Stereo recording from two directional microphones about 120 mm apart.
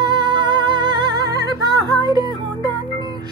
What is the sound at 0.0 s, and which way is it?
Music, 40° right (ahead or behind).